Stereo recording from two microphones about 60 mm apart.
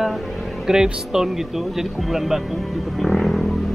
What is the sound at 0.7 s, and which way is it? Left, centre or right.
Speech, centre.